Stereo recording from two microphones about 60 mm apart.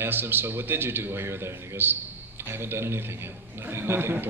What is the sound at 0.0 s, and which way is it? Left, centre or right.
A man's voice, right.